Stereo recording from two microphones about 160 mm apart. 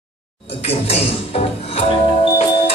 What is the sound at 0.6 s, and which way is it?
Speech, 40° left (ahead or behind).